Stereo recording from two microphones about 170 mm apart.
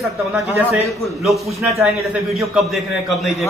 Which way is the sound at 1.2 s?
Centre (ahead or behind).